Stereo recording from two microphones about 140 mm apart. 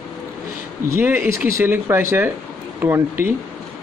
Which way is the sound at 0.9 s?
15° right (ahead or behind).